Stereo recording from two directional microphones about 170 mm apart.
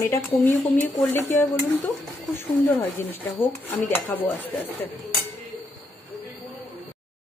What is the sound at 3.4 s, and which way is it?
Speech, 10° left (ahead or behind).